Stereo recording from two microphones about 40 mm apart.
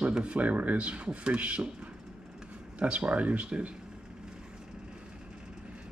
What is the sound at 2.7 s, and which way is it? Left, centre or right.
Speech, right.